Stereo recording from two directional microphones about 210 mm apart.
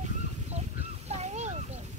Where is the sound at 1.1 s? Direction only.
30° right (ahead or behind).